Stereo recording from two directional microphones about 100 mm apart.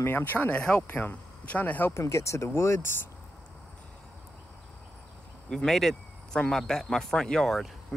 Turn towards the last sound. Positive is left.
turn(degrees=0)  # may be behind; listen again after turning